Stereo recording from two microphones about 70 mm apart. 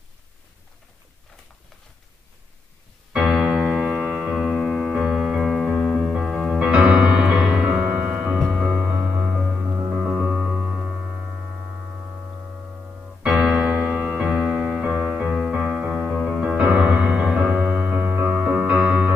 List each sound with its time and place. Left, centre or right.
3.1 s piano: centre
4.9 s music: centre
6.7 s music: centre
9.6 s music: right
9.9 s music: centre
13.3 s music: centre
13.7 s music: centre
15.2 s music: centre
16.1 s music: centre
16.3 s music: centre